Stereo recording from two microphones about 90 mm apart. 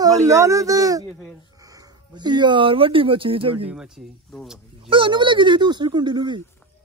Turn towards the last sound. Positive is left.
turn(degrees=-55)  # may be behind; listen again after turning